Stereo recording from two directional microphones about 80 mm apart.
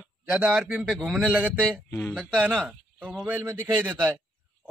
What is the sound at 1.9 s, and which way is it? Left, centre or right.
Speech, centre.